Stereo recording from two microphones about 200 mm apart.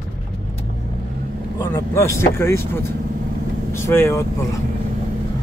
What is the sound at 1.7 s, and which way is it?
Speech, 15° left (ahead or behind).